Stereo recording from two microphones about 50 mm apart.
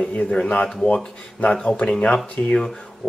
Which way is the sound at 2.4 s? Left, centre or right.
Left.